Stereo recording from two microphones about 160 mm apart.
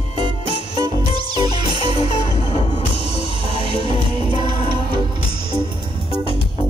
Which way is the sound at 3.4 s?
30° right (ahead or behind).